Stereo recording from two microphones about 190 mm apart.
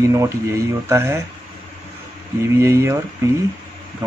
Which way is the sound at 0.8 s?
15° right (ahead or behind).